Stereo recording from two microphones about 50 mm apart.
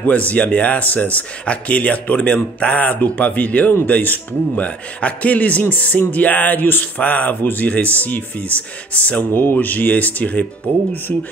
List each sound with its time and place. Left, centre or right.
0.3 s a man's voice: left
9.3 s a man's voice: left